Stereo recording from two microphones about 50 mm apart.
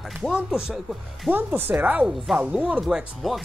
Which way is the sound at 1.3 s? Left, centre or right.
Right.